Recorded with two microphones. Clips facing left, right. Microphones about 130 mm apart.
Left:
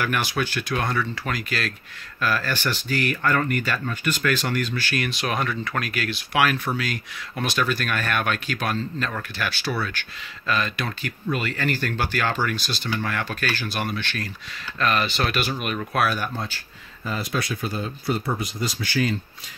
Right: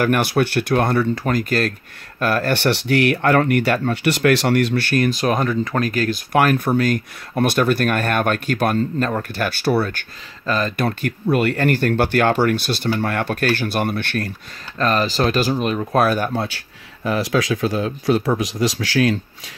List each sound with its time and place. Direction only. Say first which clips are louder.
0.0 s speech: right 8 dB; 55° right (ahead or behind)
5.0 s speech: right 7 dB; 40° right (ahead or behind)
9.8 s speech: right 4 dB; 40° right (ahead or behind)
10.9 s speech: right 8 dB; 55° right (ahead or behind)
14.8 s speech: right 5 dB; 35° right (ahead or behind)
16.0 s speech: right 6 dB; 45° right (ahead or behind)
16.3 s speech: right 8 dB; 70° right (ahead or behind)